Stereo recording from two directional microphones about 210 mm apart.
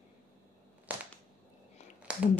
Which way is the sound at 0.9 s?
10° right (ahead or behind).